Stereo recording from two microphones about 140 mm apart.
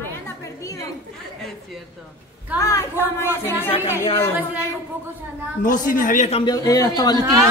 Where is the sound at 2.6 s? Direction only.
20° left (ahead or behind).